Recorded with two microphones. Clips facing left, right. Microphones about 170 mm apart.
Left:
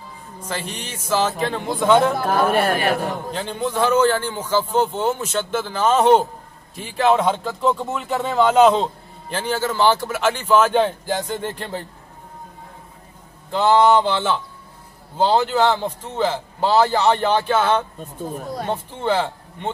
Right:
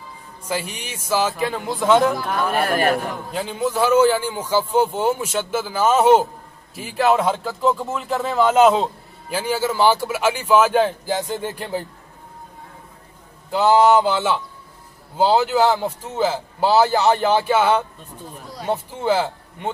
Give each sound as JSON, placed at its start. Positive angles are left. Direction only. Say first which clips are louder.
{"t": 0.5, "sound": "speech", "louder": "right 2 dB", "side_deg": -10}
{"t": 3.3, "sound": "speech", "louder": "right 1 dB", "side_deg": -5}
{"t": 13.5, "sound": "speech", "louder": "right 1 dB", "side_deg": -10}
{"t": 18.2, "sound": "speech", "louder": "left 8 dB", "side_deg": 45}
{"t": 18.7, "sound": "speech", "louder": "right 3 dB", "side_deg": -10}